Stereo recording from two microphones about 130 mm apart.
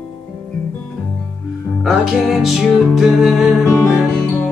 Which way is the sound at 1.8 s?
Centre (ahead or behind).